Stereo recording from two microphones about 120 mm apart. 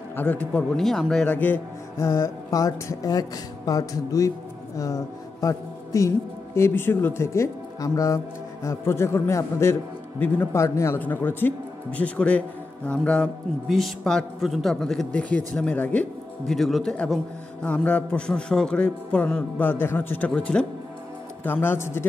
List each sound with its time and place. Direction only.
0.1 s a man's voice: 15° left (ahead or behind)
21.5 s a man's voice: 20° left (ahead or behind)